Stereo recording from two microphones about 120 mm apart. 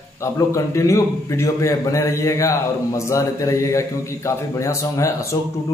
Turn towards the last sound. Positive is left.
turn(degrees=25)  # may be behind; listen again after turning